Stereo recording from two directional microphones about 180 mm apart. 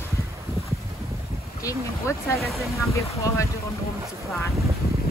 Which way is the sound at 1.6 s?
15° left (ahead or behind).